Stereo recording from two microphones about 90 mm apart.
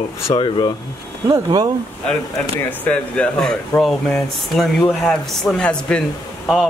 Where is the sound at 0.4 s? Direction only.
55° left (ahead or behind).